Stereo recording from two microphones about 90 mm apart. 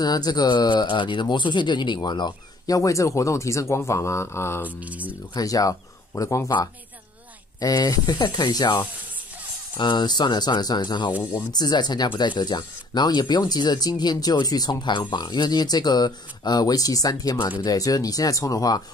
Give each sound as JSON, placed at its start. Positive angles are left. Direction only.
{"t": 0.0, "sound": "speech", "side_deg": 50}
{"t": 4.7, "sound": "speech", "side_deg": -15}
{"t": 5.3, "sound": "speech", "side_deg": 40}
{"t": 7.6, "sound": "speech", "side_deg": 45}
{"t": 9.8, "sound": "speech", "side_deg": 60}